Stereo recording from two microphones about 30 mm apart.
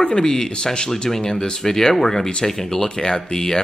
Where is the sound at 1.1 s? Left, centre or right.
Centre.